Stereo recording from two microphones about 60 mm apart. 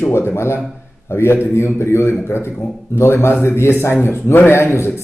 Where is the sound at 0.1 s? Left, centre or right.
Left.